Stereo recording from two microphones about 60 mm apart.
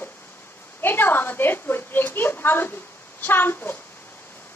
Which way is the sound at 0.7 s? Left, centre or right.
Left.